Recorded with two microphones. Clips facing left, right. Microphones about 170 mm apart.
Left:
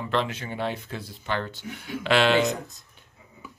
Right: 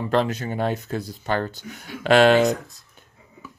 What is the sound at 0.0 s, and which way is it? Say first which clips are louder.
Speech: right 5 dB; 40° right (ahead or behind).